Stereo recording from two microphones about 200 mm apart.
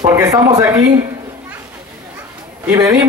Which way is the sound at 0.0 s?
15° right (ahead or behind).